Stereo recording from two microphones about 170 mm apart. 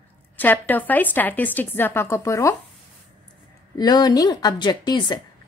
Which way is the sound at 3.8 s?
25° left (ahead or behind).